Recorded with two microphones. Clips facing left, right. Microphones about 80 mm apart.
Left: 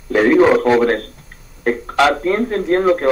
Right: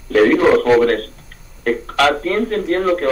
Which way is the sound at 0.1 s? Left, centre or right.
Centre.